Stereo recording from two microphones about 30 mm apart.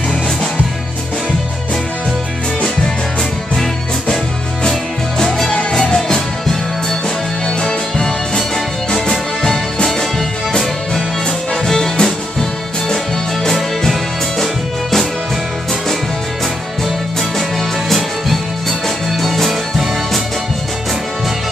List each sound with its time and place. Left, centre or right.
5.5 s music: left
7.4 s music: left
11.6 s music: centre
17.8 s music: centre